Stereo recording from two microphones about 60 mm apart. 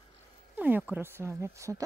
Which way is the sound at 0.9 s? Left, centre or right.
Right.